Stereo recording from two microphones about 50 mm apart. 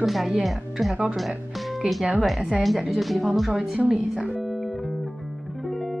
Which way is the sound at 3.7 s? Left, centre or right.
Right.